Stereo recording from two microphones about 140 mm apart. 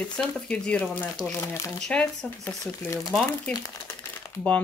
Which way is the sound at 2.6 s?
25° left (ahead or behind).